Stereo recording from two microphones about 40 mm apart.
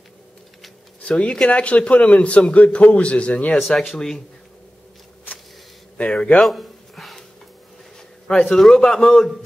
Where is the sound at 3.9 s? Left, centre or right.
Centre.